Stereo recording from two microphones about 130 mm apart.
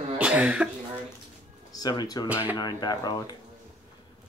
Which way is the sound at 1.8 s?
30° left (ahead or behind).